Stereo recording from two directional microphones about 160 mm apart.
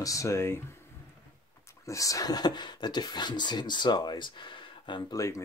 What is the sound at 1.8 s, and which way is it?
Speech, 20° left (ahead or behind).